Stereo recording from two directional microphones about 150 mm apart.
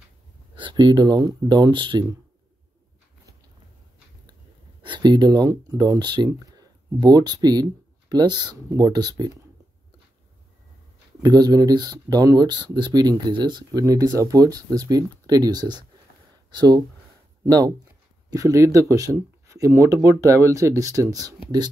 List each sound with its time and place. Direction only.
0.6 s speech: 30° right (ahead or behind)
4.8 s speech: 30° right (ahead or behind)
11.2 s speech: 25° right (ahead or behind)